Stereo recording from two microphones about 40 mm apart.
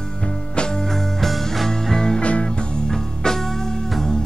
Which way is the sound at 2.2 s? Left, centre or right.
Left.